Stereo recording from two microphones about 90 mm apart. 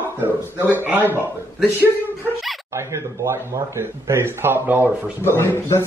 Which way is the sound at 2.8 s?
30° right (ahead or behind).